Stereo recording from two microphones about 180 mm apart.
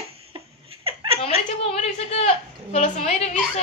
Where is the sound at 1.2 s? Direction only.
35° left (ahead or behind).